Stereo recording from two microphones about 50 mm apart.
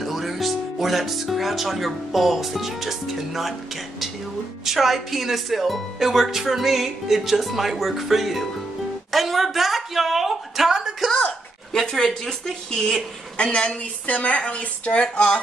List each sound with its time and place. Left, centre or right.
0.0 s speech: centre
4.6 s speech: centre
9.1 s a sound: centre
11.7 s speech: centre
13.4 s speech: left